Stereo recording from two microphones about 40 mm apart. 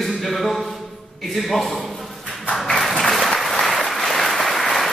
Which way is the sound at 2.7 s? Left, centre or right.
Centre.